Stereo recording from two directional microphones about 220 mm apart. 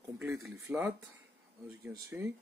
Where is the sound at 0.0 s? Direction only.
15° right (ahead or behind).